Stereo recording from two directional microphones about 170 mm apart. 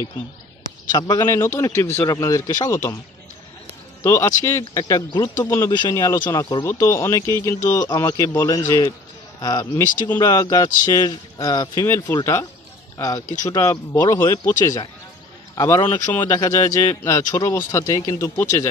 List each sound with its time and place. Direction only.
0.9 s a man's voice: 25° left (ahead or behind)
4.0 s a man's voice: 15° left (ahead or behind)
6.6 s a man's voice: 15° left (ahead or behind)